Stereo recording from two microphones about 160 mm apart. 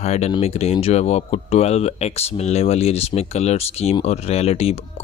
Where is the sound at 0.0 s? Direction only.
45° left (ahead or behind).